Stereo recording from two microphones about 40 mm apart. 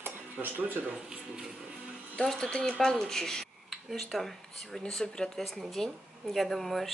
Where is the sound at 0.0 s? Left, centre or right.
Right.